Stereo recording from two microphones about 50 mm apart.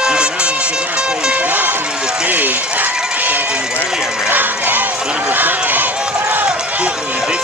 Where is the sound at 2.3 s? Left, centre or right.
Right.